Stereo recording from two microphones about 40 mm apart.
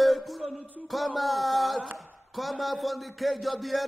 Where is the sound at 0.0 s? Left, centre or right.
Centre.